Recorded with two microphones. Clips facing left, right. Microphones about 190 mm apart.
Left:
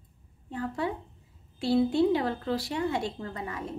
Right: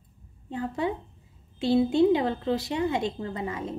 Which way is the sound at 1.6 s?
20° right (ahead or behind).